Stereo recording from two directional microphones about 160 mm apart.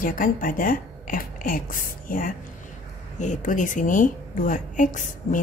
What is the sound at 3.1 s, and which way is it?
A woman's voice, 50° left (ahead or behind).